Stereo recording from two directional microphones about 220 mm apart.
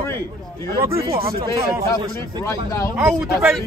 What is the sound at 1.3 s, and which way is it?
Speech, 15° right (ahead or behind).